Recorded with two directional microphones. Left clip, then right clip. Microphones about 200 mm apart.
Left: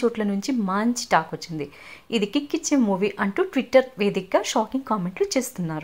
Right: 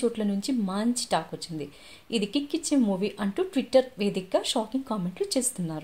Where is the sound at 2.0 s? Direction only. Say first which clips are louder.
Left 5 dB; 40° left (ahead or behind).